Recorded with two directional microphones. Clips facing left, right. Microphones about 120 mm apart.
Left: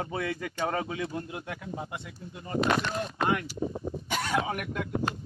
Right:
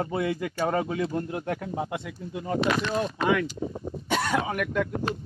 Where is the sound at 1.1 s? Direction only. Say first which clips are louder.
Right 7 dB; 45° right (ahead or behind); by 2.6 s 70° right (ahead or behind).